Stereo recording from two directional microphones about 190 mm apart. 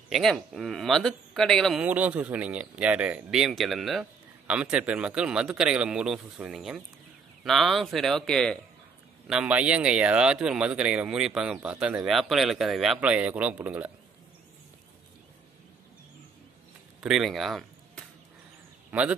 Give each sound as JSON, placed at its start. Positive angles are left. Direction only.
{"t": 0.1, "sound": "speech", "side_deg": 0}
{"t": 17.0, "sound": "a man's voice", "side_deg": 0}